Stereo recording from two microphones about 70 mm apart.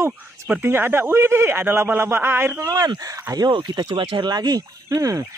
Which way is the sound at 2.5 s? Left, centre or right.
Right.